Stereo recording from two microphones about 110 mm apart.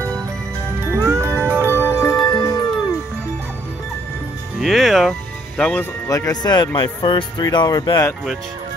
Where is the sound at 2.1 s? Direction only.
45° left (ahead or behind).